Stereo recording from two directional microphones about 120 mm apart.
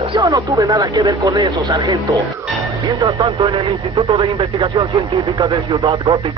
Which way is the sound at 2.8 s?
40° right (ahead or behind).